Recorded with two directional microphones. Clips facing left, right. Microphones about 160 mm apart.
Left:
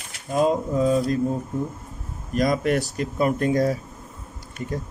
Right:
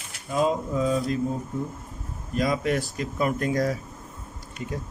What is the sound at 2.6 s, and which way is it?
Speech, 65° left (ahead or behind).